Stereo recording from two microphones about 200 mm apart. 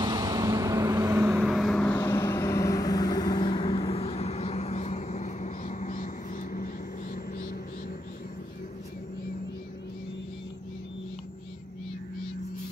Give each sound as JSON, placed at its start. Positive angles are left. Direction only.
{"t": 0.0, "sound": "vehicle", "side_deg": -20}
{"t": 1.3, "sound": "vehicle", "side_deg": 0}